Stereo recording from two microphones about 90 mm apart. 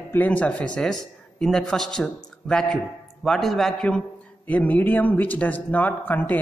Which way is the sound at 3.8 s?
15° left (ahead or behind).